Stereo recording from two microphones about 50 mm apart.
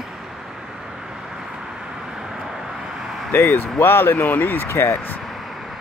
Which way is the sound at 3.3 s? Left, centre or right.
Left.